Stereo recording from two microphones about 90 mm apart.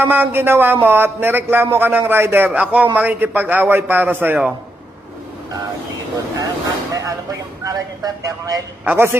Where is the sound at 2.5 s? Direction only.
10° right (ahead or behind).